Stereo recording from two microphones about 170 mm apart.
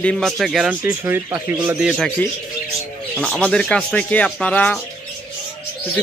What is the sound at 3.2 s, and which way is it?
Speech, 5° left (ahead or behind).